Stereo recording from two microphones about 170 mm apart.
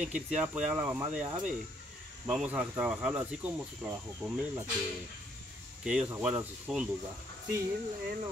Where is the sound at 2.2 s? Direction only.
5° right (ahead or behind).